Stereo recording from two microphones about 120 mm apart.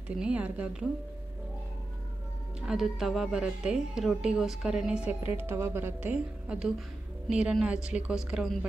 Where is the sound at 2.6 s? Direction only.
5° right (ahead or behind).